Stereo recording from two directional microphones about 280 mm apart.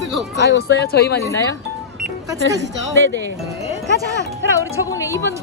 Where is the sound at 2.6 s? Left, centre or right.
Right.